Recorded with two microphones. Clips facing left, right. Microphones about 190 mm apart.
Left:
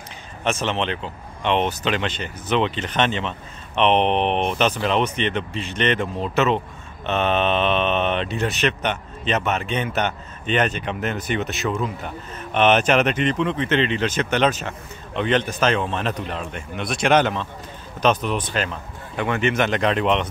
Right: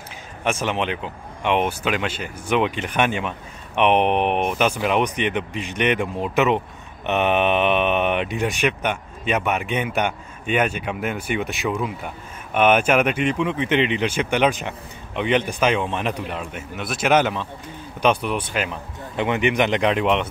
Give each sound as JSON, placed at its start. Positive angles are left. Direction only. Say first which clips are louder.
{"t": 0.4, "sound": "speech", "louder": "even", "side_deg": -10}